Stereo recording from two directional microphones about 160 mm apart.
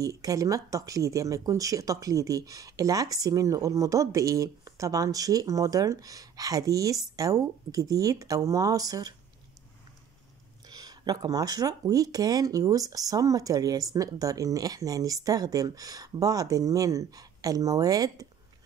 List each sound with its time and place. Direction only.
0.0 s speech: 20° right (ahead or behind)
10.7 s speech: 25° right (ahead or behind)